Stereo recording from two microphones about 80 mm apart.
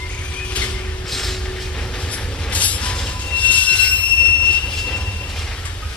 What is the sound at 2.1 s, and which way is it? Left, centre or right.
Train, centre.